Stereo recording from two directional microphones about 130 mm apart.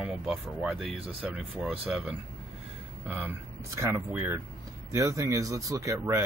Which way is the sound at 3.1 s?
15° right (ahead or behind).